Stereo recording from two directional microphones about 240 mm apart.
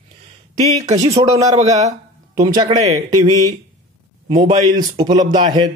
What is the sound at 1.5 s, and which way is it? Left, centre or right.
Speech, right.